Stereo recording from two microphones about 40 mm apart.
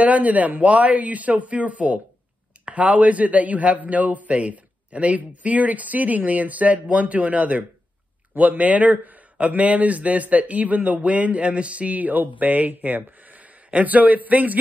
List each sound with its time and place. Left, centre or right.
0.0 s a man's voice: right